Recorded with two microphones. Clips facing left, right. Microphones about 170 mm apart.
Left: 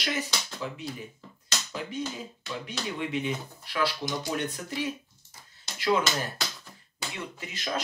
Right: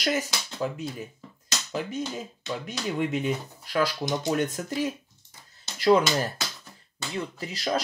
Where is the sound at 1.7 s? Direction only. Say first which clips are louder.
Right 4 dB; 45° right (ahead or behind).